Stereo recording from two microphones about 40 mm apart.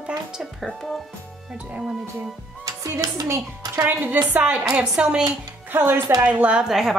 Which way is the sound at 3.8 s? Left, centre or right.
Right.